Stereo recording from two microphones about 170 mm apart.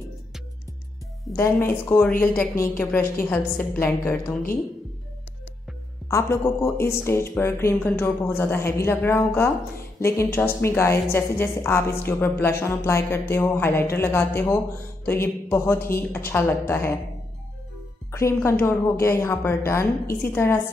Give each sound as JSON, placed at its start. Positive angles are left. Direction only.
{"t": 1.3, "sound": "a woman's voice", "side_deg": 15}
{"t": 6.0, "sound": "a woman's voice", "side_deg": 15}
{"t": 18.1, "sound": "a woman's voice", "side_deg": 15}